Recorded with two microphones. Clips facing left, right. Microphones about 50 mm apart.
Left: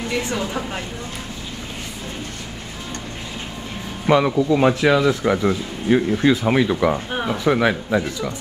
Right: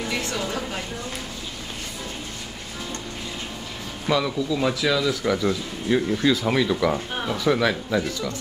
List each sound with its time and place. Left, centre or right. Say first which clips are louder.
0.2 s speech: left 3 dB; centre
4.1 s speech: left 7 dB; left